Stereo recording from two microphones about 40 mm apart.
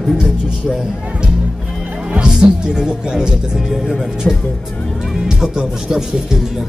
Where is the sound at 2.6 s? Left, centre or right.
Centre.